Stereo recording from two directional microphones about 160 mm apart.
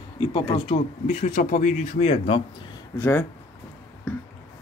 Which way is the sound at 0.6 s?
45° left (ahead or behind).